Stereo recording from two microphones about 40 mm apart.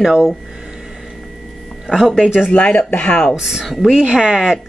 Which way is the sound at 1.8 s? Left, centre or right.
Centre.